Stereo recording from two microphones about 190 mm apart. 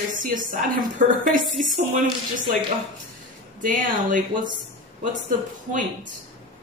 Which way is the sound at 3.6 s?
45° right (ahead or behind).